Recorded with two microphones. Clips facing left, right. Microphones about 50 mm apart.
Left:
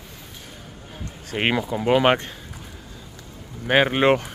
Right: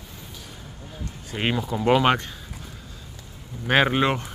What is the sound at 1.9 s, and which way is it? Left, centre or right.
Speech, left.